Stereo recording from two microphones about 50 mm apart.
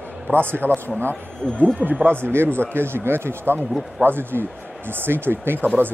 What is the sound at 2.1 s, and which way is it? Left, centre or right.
Speech, right.